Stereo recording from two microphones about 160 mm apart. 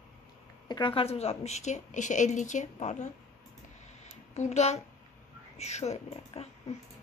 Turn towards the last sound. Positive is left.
turn(degrees=40)  # may be behind; listen again after turning